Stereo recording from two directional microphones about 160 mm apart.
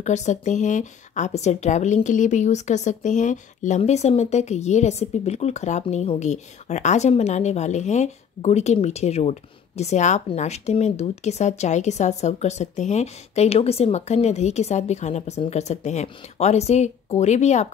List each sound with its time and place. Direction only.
0.0 s speech: 45° left (ahead or behind)